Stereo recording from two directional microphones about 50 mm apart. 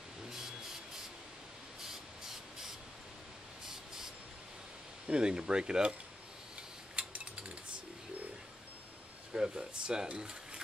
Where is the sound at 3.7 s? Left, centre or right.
Centre.